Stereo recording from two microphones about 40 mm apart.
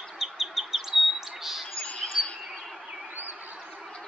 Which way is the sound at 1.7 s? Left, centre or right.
Left.